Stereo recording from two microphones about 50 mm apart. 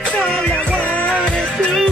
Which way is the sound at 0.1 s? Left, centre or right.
Left.